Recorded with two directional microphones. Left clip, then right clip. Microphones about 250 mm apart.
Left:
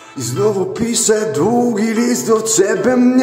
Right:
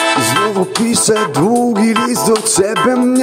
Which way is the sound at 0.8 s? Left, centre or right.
Right.